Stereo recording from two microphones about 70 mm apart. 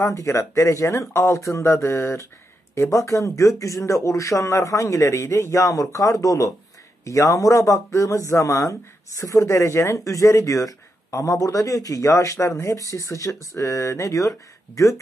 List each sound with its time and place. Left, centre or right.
0.0 s speech: left